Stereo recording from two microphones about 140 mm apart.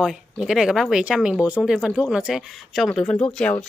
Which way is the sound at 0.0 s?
5° right (ahead or behind).